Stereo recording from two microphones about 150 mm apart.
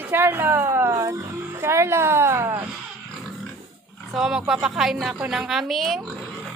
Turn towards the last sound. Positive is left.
turn(degrees=0)  # may be behind; listen again after turning